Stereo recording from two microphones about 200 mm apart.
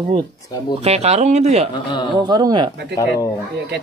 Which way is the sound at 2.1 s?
20° right (ahead or behind).